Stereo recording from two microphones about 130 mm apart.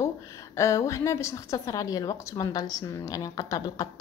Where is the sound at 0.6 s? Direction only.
25° left (ahead or behind).